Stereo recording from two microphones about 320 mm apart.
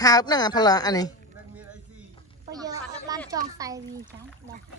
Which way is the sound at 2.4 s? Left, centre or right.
Centre.